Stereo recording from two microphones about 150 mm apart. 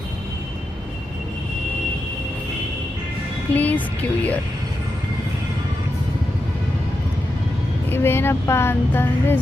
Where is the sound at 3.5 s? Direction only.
10° left (ahead or behind).